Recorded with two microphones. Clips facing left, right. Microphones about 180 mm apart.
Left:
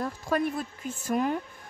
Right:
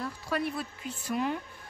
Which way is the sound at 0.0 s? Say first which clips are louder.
Left 4 dB; 45° left (ahead or behind).